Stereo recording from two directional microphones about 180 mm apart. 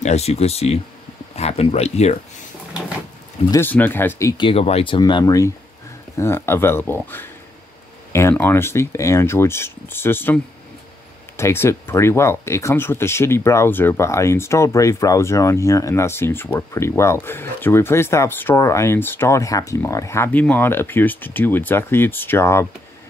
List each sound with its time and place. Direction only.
0.0 s speech: 35° left (ahead or behind)
3.5 s speech: 10° left (ahead or behind)
4.5 s speech: 35° left (ahead or behind); by 22.7 s 15° left (ahead or behind)